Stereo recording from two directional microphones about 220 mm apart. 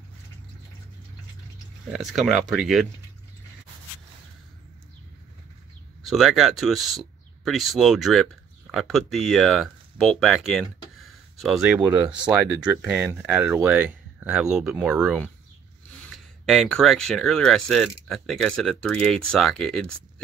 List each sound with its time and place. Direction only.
1.9 s speech: centre (ahead or behind)
6.0 s speech: centre (ahead or behind)
16.4 s speech: centre (ahead or behind)